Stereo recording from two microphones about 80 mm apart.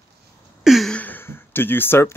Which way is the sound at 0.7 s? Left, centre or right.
Centre.